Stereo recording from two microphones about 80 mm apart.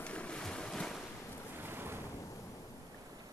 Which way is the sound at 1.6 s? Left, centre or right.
Right.